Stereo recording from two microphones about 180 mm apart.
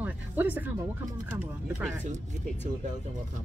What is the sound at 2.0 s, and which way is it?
Speech, 40° right (ahead or behind).